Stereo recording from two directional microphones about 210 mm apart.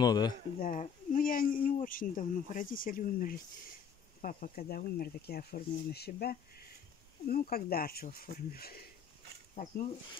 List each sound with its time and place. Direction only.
0.0 s speech: 20° left (ahead or behind)
0.6 s speech: 40° left (ahead or behind)